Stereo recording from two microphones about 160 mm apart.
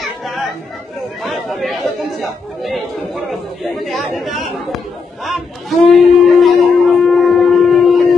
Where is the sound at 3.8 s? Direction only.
Centre (ahead or behind).